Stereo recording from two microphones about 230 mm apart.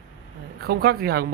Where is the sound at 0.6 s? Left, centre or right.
Right.